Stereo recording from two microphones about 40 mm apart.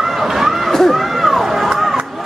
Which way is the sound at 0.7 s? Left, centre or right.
Centre.